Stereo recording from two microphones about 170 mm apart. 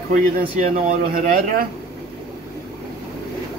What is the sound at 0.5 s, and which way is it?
Speech, 50° right (ahead or behind).